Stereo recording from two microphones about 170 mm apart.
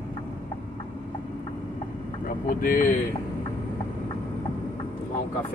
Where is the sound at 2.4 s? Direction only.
55° left (ahead or behind).